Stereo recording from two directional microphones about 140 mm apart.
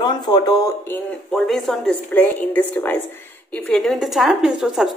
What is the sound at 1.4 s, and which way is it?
A woman's voice, centre (ahead or behind).